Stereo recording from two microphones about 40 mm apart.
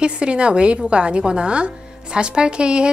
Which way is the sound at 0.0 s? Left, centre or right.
Right.